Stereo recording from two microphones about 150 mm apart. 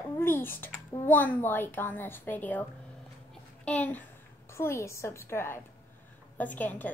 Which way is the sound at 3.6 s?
10° left (ahead or behind).